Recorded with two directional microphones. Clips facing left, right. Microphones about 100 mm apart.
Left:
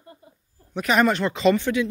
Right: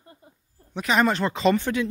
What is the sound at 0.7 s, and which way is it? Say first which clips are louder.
Speech: left 2 dB; 25° right (ahead or behind).